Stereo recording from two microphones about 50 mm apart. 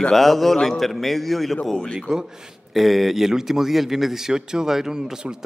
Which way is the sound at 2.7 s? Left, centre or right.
Centre.